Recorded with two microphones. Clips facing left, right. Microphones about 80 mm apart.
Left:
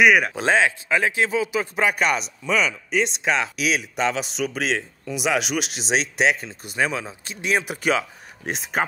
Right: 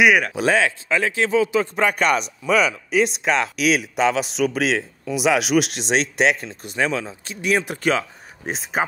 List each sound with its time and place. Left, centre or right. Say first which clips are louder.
0.4 s speech: right 1 dB; left
8.5 s speech: right 1 dB; centre